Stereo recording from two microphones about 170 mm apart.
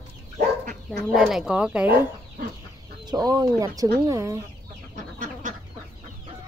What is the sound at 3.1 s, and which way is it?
Speech, 25° right (ahead or behind).